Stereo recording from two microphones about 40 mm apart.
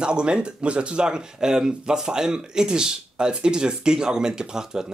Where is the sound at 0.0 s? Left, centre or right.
Right.